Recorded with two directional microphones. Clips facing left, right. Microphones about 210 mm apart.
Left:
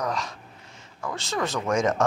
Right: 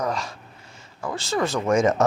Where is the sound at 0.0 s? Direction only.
Centre (ahead or behind).